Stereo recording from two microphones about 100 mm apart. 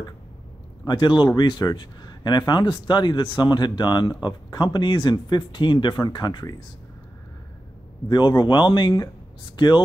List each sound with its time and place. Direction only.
0.8 s speech: 50° left (ahead or behind)
8.1 s speech: 50° left (ahead or behind)